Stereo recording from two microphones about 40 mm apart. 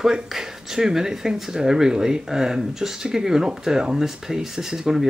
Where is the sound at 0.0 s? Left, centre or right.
Centre.